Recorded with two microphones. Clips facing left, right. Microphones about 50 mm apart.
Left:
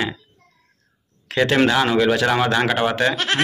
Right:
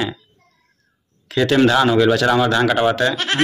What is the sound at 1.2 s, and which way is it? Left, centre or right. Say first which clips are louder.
Speech: right 2 dB; left.